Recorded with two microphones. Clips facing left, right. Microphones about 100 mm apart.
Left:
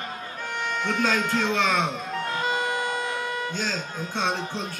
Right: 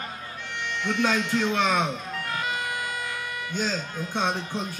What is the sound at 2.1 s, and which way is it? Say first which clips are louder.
Music: left 3 dB; 30° left (ahead or behind).